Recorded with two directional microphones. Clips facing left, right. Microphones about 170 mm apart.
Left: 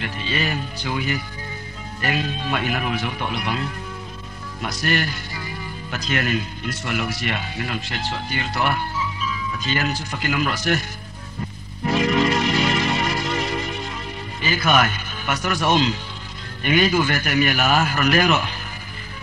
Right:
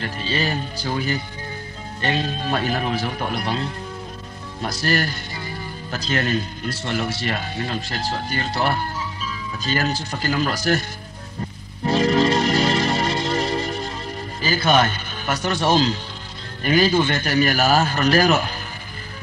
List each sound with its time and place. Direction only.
0.0 s speech: 35° right (ahead or behind)
11.8 s music: 35° right (ahead or behind)
14.4 s a man's voice: 35° right (ahead or behind)